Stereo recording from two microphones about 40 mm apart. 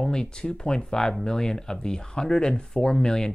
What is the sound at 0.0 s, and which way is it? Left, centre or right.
Speech, centre.